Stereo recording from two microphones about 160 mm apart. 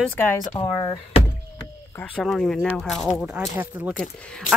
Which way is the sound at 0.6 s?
30° left (ahead or behind).